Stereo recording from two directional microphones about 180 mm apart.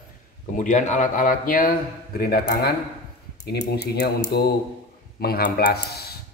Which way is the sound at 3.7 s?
65° left (ahead or behind).